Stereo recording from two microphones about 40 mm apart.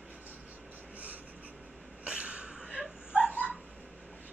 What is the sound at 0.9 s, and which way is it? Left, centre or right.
Writing, right.